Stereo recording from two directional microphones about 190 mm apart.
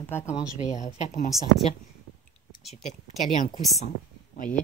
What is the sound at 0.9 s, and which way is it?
Speech, 40° left (ahead or behind).